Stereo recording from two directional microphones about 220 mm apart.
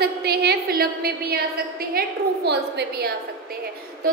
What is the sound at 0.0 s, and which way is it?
A woman's voice, 45° right (ahead or behind).